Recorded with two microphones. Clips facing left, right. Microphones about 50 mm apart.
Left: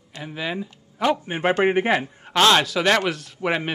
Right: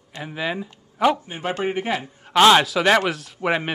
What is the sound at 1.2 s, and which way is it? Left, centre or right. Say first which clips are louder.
A man's voice: left 5 dB; left.